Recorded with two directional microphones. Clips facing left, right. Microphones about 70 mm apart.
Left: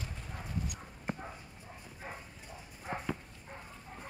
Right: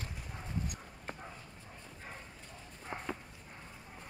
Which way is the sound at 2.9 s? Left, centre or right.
Left.